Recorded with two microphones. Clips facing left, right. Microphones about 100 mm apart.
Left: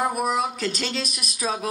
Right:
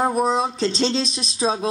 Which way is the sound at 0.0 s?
25° right (ahead or behind).